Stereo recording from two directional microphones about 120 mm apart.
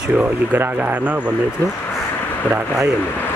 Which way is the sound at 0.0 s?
10° right (ahead or behind).